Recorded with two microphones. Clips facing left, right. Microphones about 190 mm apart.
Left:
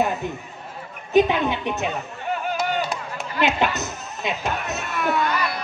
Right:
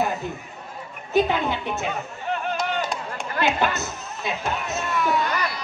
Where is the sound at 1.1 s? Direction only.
20° left (ahead or behind).